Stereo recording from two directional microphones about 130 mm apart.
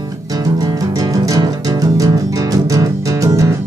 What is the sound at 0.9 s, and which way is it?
Music, 25° right (ahead or behind).